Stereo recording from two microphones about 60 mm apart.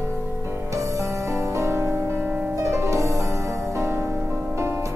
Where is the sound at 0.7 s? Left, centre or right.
Right.